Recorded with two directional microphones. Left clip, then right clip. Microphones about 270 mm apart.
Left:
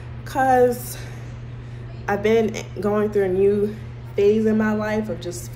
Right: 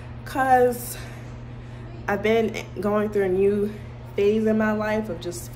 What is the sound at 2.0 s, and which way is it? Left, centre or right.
A woman's voice, centre.